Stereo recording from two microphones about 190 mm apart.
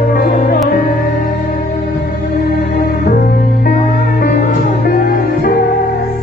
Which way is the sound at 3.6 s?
50° left (ahead or behind).